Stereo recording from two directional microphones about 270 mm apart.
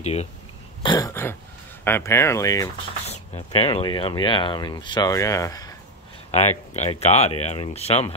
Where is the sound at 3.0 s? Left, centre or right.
Left.